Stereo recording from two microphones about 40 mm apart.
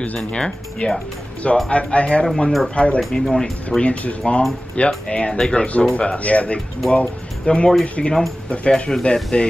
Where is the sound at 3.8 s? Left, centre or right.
Left; by 5.7 s centre.